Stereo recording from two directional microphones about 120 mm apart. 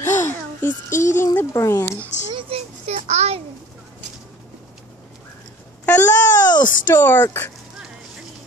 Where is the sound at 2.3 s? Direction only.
50° right (ahead or behind).